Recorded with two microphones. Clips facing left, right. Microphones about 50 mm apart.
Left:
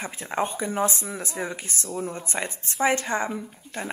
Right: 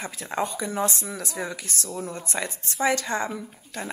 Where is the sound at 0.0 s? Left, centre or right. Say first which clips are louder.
Left 1 dB; left.